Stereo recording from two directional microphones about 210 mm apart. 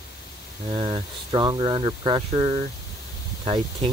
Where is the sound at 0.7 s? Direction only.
25° right (ahead or behind).